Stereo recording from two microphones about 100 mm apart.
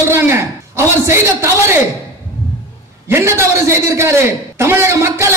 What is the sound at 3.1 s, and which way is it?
A man's voice, 25° right (ahead or behind).